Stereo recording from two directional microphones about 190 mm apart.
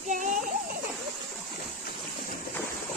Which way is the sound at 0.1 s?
40° right (ahead or behind).